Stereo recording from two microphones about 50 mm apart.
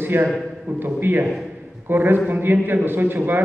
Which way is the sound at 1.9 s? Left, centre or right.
Right.